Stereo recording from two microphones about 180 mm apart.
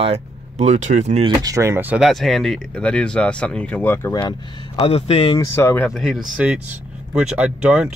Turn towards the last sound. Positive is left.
turn(degrees=-5)  # may be behind; listen again after turning